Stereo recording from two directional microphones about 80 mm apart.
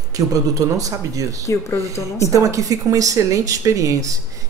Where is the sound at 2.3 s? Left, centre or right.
Right.